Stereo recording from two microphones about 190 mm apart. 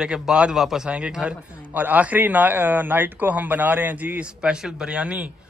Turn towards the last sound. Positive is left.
turn(degrees=-5)  # may be behind; listen again after turning